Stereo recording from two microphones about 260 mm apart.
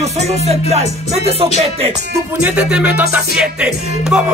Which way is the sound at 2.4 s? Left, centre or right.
Centre.